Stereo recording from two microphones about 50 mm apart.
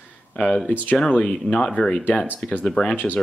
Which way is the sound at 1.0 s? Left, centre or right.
Left.